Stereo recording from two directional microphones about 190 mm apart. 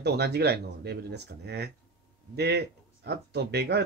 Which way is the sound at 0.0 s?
60° right (ahead or behind).